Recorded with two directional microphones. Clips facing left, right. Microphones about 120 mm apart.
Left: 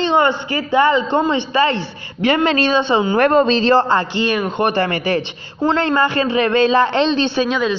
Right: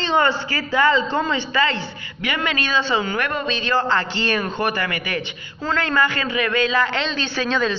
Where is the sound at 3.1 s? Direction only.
35° left (ahead or behind).